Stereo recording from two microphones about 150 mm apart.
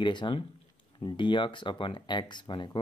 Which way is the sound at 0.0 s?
30° left (ahead or behind).